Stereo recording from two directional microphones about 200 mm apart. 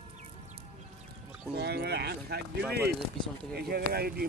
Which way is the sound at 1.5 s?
55° right (ahead or behind).